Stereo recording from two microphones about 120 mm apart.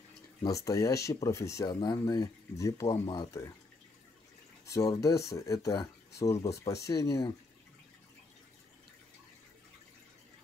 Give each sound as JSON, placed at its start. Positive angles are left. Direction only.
{"t": 0.4, "sound": "speech", "side_deg": 30}
{"t": 4.6, "sound": "speech", "side_deg": 25}